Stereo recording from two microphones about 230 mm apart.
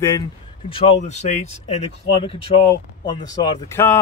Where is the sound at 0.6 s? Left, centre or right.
Left.